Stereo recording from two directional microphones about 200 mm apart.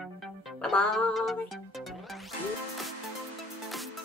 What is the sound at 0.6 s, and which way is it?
Music, 5° left (ahead or behind).